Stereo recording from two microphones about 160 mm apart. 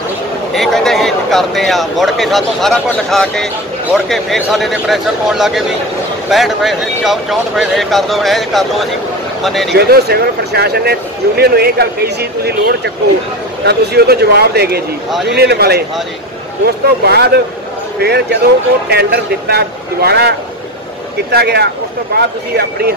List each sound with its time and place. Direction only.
0.5 s speech: centre (ahead or behind)
9.7 s speech: 85° right